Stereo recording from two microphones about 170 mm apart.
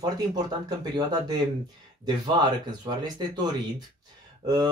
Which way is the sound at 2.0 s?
25° right (ahead or behind).